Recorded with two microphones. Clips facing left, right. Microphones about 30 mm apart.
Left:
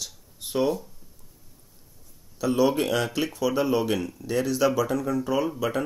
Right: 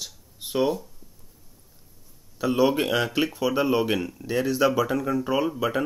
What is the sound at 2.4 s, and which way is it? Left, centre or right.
Speech, centre.